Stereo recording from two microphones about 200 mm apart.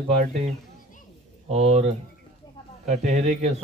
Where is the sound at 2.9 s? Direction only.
35° right (ahead or behind).